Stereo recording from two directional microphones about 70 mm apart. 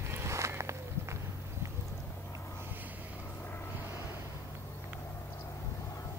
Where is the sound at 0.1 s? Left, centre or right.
Right.